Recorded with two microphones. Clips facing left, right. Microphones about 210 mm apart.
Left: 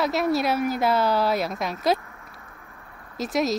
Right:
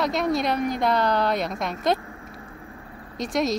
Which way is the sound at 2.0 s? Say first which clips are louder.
Right 6 dB; 25° right (ahead or behind).